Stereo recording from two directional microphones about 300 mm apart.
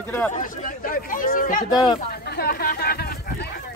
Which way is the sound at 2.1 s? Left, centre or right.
Left.